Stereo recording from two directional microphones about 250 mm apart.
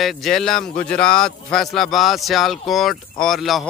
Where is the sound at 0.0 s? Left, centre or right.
Centre.